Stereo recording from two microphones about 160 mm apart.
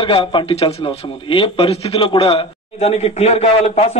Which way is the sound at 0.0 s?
35° left (ahead or behind).